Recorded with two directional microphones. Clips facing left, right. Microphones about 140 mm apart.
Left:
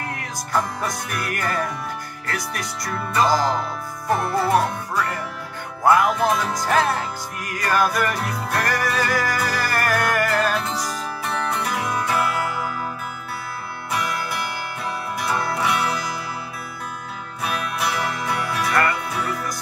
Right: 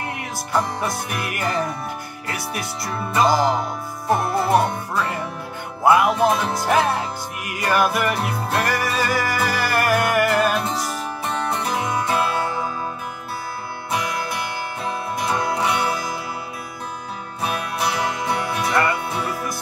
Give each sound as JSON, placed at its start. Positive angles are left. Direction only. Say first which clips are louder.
{"t": 0.2, "sound": "music", "louder": "right 1 dB", "side_deg": -10}
{"t": 2.2, "sound": "music", "louder": "right 1 dB", "side_deg": -10}
{"t": 4.1, "sound": "music", "louder": "right 1 dB", "side_deg": -25}
{"t": 6.0, "sound": "music", "louder": "right 2 dB", "side_deg": -25}
{"t": 6.6, "sound": "music", "louder": "right 1 dB", "side_deg": -15}
{"t": 8.2, "sound": "music", "louder": "right 2 dB", "side_deg": -25}
{"t": 8.6, "sound": "music", "louder": "right 1 dB", "side_deg": -5}
{"t": 11.2, "sound": "music", "louder": "right 1 dB", "side_deg": -30}
{"t": 14.9, "sound": "music", "louder": "right 2 dB", "side_deg": -20}
{"t": 17.4, "sound": "music", "louder": "right 1 dB", "side_deg": -30}